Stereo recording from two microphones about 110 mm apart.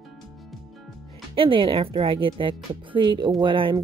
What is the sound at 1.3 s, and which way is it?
Speech, 55° right (ahead or behind).